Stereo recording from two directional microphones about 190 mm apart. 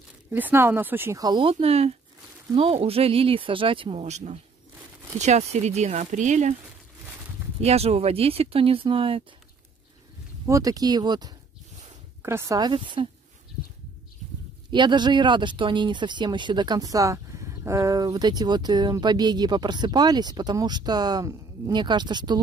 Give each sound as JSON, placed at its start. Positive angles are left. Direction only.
{"t": 0.3, "sound": "speech", "side_deg": -10}
{"t": 7.6, "sound": "speech", "side_deg": -35}
{"t": 10.4, "sound": "speech", "side_deg": -15}
{"t": 14.7, "sound": "speech", "side_deg": -25}